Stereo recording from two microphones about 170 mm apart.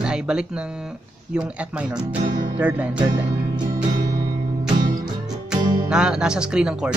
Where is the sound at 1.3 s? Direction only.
5° right (ahead or behind).